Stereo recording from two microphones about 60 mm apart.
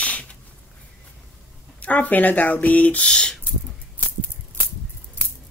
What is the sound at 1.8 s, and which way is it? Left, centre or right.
Speech, left.